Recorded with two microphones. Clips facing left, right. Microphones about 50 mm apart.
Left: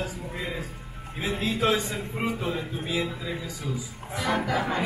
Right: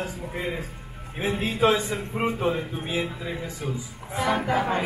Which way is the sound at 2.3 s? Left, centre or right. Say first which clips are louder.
Right 4 dB; right.